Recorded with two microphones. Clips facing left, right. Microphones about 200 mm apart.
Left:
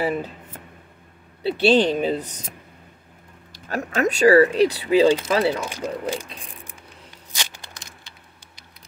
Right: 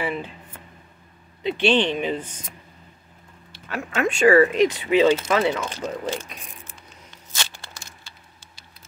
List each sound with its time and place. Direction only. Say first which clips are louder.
0.0 s speech: left 4 dB; 40° left (ahead or behind)
1.6 s speech: left 3 dB; 40° left (ahead or behind)
3.5 s speech: left 2 dB; 40° left (ahead or behind)
5.7 s speech: left 1 dB; 10° left (ahead or behind)
7.3 s a sound: right 1 dB; 15° left (ahead or behind)